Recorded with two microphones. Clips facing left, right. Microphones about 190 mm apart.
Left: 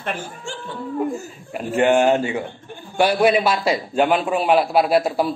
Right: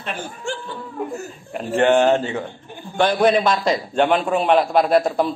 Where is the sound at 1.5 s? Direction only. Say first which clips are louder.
Right 1 dB; 10° left (ahead or behind).